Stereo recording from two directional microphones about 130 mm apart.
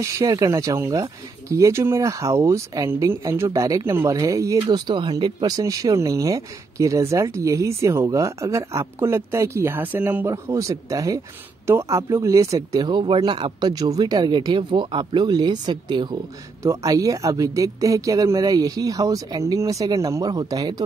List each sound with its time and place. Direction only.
0.2 s speech: 25° right (ahead or behind)
4.6 s speech: 35° right (ahead or behind)